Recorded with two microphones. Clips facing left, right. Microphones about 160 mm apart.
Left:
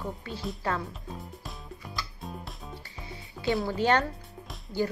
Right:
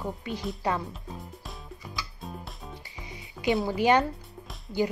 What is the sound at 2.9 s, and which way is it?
Music, 15° right (ahead or behind).